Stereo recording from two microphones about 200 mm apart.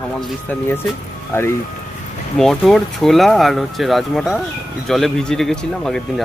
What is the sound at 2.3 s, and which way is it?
Speech, centre (ahead or behind).